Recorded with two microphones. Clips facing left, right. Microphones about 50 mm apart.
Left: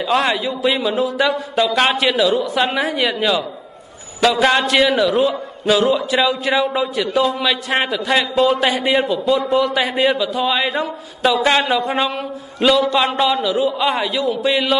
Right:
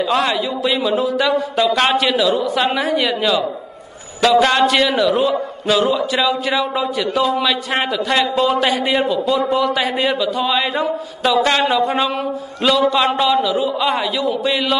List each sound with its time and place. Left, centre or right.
0.1 s a man's voice: centre